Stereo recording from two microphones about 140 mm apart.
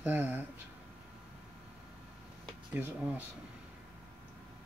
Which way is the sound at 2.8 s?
10° right (ahead or behind).